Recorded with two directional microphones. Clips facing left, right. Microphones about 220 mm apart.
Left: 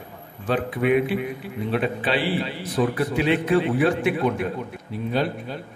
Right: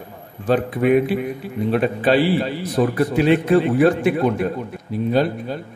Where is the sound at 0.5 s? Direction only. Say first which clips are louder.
Right 5 dB; 40° right (ahead or behind).